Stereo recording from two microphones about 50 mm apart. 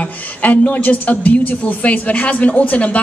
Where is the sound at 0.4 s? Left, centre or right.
Left.